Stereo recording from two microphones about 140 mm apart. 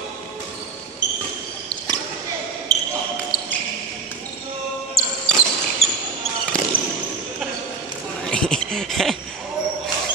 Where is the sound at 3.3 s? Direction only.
30° left (ahead or behind).